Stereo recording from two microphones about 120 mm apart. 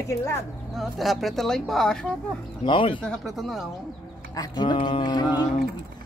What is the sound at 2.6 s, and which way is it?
Speech, 45° left (ahead or behind).